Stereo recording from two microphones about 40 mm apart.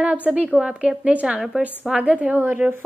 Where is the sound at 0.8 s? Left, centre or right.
Right.